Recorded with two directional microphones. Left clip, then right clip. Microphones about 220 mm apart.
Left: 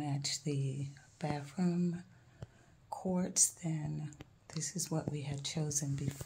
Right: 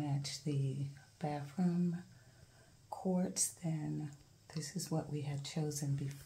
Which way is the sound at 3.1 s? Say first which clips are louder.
Left 5 dB; 25° left (ahead or behind).